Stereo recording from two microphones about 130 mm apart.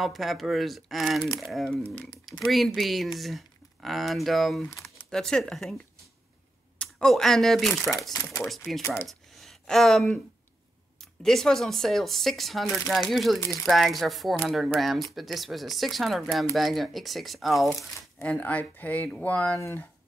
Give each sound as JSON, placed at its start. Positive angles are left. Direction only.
{"t": 0.0, "sound": "speech", "side_deg": 0}
{"t": 6.8, "sound": "speech", "side_deg": 5}
{"t": 8.1, "sound": "speech", "side_deg": 25}
{"t": 8.5, "sound": "speech", "side_deg": 0}
{"t": 19.5, "sound": "speech", "side_deg": 20}